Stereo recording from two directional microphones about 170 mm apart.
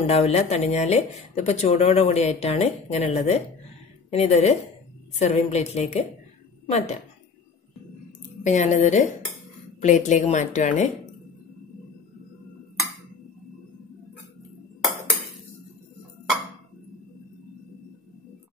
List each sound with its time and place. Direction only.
0.1 s a woman's voice: 35° left (ahead or behind)
8.5 s a woman's voice: 45° left (ahead or behind)